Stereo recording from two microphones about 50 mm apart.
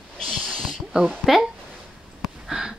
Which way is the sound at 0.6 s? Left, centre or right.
Centre.